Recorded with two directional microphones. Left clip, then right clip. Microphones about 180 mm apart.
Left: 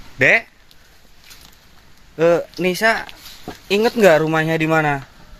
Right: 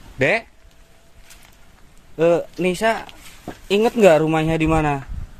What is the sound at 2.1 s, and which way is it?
Speech, 5° right (ahead or behind).